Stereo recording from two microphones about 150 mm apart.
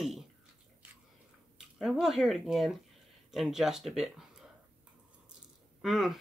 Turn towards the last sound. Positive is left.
turn(degrees=0)  # may be behind; listen again after turning